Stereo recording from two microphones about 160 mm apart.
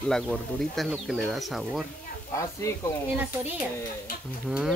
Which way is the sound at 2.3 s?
20° left (ahead or behind).